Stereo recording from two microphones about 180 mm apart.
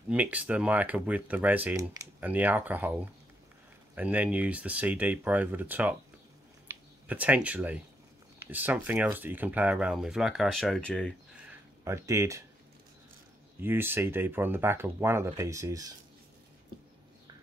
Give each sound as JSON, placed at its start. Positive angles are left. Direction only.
{"t": 0.1, "sound": "speech", "side_deg": -10}
{"t": 11.8, "sound": "speech", "side_deg": -15}
{"t": 13.6, "sound": "speech", "side_deg": -10}